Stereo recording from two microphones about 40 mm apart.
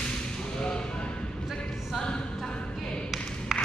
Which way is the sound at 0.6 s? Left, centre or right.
Left.